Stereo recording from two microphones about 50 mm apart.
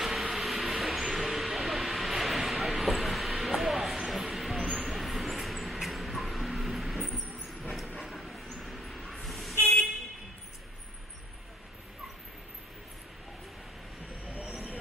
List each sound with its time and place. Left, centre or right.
0.0 s vehicle: centre
8.0 s train: centre
9.1 s vehicle: centre
14.3 s vehicle: right